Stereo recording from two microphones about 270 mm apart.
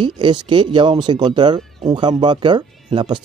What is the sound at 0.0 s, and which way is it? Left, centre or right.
Speech, centre.